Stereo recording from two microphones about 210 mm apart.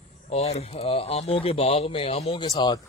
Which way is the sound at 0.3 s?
30° left (ahead or behind).